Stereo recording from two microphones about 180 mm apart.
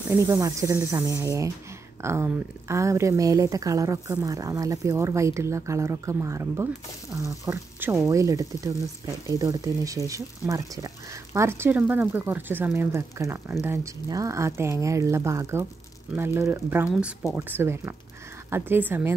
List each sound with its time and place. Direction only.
0.1 s speech: 20° right (ahead or behind)